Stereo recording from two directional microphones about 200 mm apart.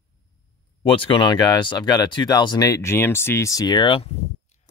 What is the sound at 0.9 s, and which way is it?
Speech, 25° left (ahead or behind).